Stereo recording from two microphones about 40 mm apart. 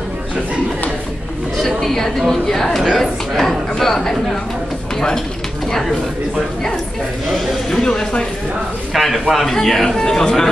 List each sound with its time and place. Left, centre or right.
1.6 s a man's voice: centre
5.7 s speech: centre
7.3 s a sound: centre
8.9 s a man's voice: centre